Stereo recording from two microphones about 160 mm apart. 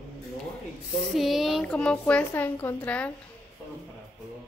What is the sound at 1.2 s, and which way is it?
A woman's voice, centre (ahead or behind).